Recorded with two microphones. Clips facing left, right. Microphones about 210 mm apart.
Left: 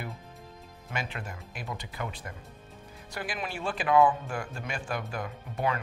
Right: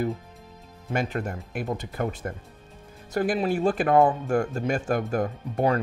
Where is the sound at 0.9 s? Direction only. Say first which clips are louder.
Right 9 dB; 45° right (ahead or behind).